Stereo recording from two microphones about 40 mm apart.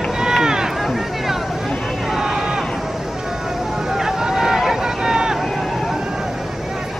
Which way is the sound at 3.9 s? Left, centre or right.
Centre.